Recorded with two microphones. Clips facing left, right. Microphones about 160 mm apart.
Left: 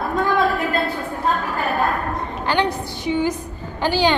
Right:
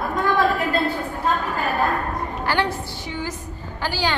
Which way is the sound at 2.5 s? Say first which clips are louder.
Left 3 dB; 15° left (ahead or behind).